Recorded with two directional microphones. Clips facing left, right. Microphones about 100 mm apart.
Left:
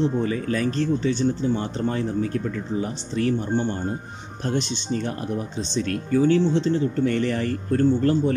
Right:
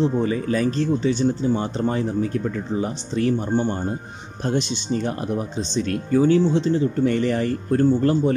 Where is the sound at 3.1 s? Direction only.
20° right (ahead or behind).